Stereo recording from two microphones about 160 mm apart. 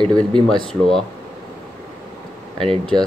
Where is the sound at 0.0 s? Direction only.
30° right (ahead or behind).